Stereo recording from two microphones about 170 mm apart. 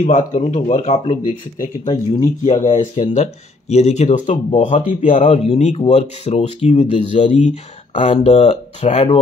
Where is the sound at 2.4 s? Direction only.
45° left (ahead or behind).